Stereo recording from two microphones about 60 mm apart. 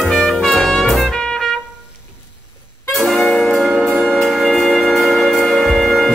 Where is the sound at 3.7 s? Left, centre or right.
Centre.